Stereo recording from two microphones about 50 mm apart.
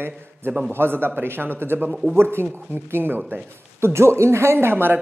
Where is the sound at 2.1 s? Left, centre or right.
Right.